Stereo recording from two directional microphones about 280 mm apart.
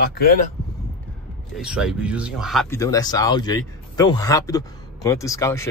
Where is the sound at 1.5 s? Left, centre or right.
Centre.